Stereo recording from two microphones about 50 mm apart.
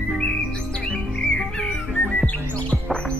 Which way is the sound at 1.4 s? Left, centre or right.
Centre.